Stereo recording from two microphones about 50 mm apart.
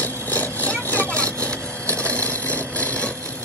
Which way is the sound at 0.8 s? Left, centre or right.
Left.